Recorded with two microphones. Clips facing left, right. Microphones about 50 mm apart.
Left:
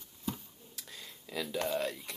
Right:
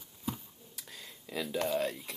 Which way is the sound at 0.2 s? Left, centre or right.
Centre.